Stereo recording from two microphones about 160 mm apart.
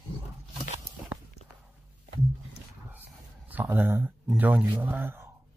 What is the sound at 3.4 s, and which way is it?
Speech, 10° right (ahead or behind).